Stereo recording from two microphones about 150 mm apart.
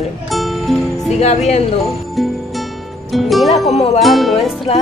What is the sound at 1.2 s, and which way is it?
Music, 50° left (ahead or behind).